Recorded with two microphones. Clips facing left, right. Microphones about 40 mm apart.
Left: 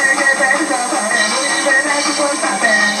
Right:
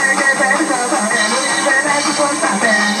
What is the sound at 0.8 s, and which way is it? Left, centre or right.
Music, right.